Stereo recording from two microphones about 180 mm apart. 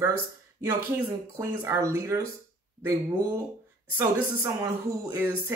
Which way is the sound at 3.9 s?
15° right (ahead or behind).